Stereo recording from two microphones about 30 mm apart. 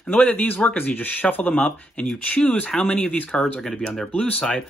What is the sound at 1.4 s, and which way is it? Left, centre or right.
Speech, left.